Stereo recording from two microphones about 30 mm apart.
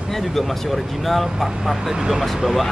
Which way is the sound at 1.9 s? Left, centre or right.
Centre.